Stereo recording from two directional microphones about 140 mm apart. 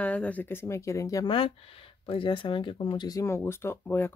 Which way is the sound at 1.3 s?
40° left (ahead or behind).